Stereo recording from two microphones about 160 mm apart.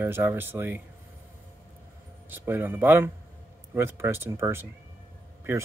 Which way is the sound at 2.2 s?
10° right (ahead or behind).